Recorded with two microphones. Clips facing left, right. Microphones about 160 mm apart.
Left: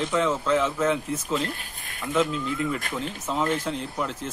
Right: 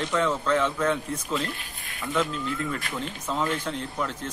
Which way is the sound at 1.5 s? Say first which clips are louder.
Left 1 dB; 45° left (ahead or behind).